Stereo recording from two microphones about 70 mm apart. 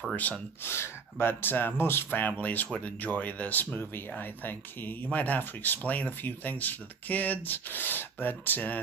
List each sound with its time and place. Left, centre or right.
0.1 s speech: left
0.7 s speech: left